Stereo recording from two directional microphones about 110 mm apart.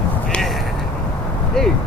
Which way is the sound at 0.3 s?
Centre (ahead or behind).